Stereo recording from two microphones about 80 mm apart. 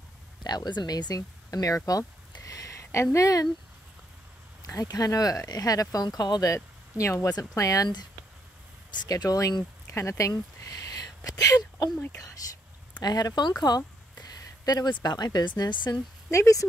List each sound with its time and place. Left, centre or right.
0.4 s speech: left
1.9 s a sound: left
4.8 s speech: left
6.0 s speech: left
6.4 s speech: left
8.9 s speech: left
9.8 s a sound: left
13.0 s a sound: left
14.9 s speech: left
16.3 s speech: left